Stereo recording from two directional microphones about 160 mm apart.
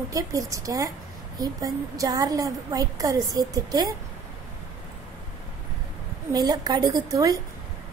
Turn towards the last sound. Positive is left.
turn(degrees=-25)  # may be behind; listen again after turning